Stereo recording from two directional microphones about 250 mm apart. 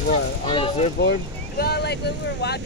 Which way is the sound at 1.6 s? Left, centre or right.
Left.